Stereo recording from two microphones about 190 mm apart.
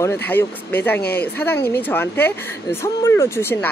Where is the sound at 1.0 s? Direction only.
55° left (ahead or behind).